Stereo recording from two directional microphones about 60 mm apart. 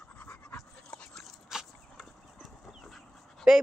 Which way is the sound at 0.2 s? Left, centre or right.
Left.